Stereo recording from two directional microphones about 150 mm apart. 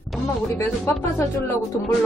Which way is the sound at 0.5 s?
15° left (ahead or behind).